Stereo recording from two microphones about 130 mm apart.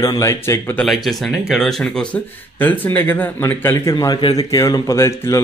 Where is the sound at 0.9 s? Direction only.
Centre (ahead or behind).